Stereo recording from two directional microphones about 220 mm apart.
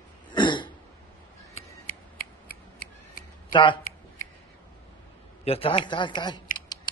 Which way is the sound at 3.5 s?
20° left (ahead or behind).